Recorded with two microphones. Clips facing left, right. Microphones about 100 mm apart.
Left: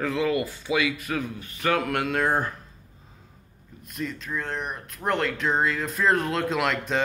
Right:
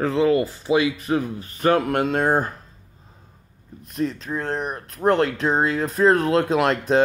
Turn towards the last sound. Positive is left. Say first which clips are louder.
# right 7 dB
turn(degrees=-40)  # may be behind; listen again after turning